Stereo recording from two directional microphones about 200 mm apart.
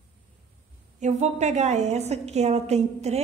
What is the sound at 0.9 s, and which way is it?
A woman's voice, 35° right (ahead or behind).